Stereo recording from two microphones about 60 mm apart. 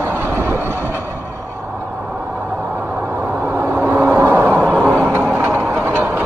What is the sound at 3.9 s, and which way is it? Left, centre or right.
Vehicle, right.